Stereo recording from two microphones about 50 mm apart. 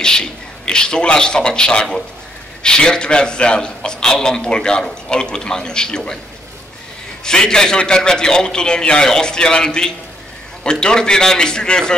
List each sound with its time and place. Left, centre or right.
0.0 s a man's voice: centre
7.2 s a man's voice: centre